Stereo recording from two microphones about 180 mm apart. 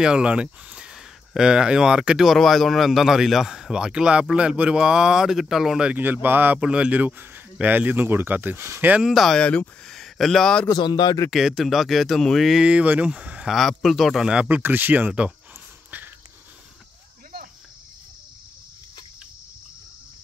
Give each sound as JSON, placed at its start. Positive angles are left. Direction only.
{"t": 0.0, "sound": "speech", "side_deg": -5}
{"t": 10.7, "sound": "speech", "side_deg": 25}
{"t": 11.2, "sound": "speech", "side_deg": 0}